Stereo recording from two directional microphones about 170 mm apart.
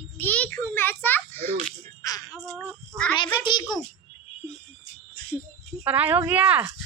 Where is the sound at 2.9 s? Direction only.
20° right (ahead or behind).